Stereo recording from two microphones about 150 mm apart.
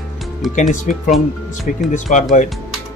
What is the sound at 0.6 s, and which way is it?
Speech, 55° left (ahead or behind).